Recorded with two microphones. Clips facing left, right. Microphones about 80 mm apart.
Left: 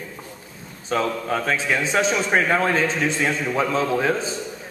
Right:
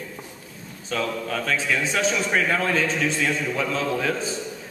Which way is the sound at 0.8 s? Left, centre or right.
Left.